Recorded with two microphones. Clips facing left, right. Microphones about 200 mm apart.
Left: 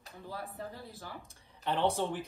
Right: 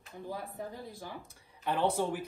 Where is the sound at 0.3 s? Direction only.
15° right (ahead or behind).